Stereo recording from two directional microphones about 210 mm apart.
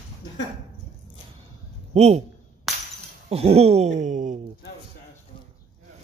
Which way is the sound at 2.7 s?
Centre (ahead or behind).